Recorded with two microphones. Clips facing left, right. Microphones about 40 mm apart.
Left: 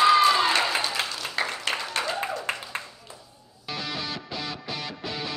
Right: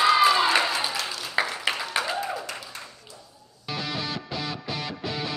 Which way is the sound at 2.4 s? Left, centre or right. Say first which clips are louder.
Left 5 dB; left.